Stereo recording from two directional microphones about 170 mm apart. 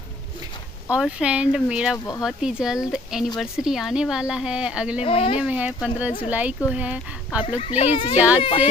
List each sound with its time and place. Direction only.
0.8 s speech: 5° right (ahead or behind)
5.0 s a child's voice: 35° left (ahead or behind)
5.4 s speech: 5° right (ahead or behind)
7.4 s a child's voice: 35° left (ahead or behind)